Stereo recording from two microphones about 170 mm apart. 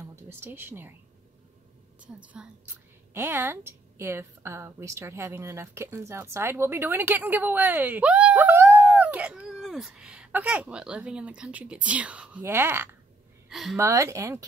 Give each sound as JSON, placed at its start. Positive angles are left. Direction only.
{"t": 0.1, "sound": "speech", "side_deg": -15}
{"t": 2.2, "sound": "a woman's voice", "side_deg": -10}
{"t": 13.5, "sound": "a woman's voice", "side_deg": 0}
{"t": 13.7, "sound": "a woman's voice", "side_deg": -15}